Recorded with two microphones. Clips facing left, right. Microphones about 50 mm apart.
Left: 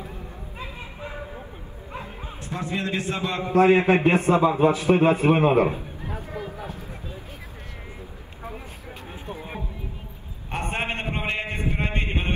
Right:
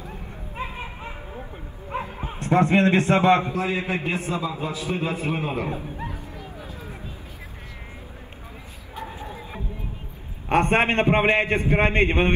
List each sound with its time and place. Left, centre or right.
0.6 s a sound: right
1.9 s bow-wow: right
2.3 s a man's voice: right
3.5 s a man's voice: left
6.0 s a sound: left
9.3 s music: left
10.5 s a man's voice: right